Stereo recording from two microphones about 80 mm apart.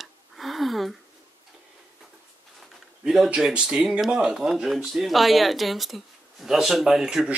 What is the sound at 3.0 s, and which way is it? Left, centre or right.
Speech, centre.